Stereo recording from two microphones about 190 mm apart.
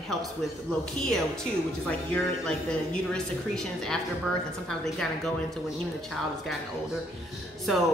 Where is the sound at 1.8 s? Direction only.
5° left (ahead or behind).